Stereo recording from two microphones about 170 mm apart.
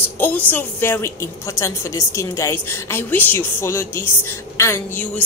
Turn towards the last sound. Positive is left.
turn(degrees=10)  # may be behind; listen again after turning